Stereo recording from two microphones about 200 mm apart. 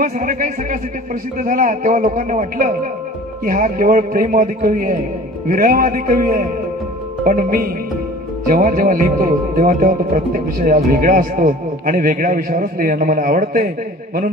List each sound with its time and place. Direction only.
0.0 s speech: 45° right (ahead or behind)